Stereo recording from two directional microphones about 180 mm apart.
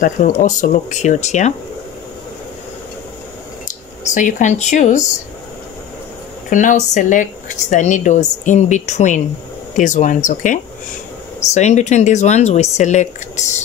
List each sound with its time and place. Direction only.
0.0 s speech: 45° left (ahead or behind)
4.0 s speech: 45° left (ahead or behind)
6.5 s speech: 45° left (ahead or behind)